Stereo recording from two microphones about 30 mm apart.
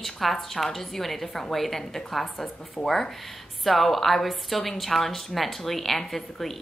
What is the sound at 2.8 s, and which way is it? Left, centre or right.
Speech, left.